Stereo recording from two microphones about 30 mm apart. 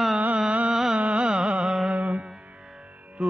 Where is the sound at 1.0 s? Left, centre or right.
Right.